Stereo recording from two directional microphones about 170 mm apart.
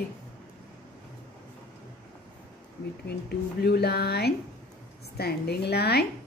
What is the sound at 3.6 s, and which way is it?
Speech, 70° left (ahead or behind).